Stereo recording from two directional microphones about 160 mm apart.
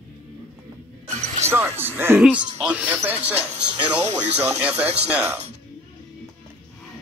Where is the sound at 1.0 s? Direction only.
45° right (ahead or behind).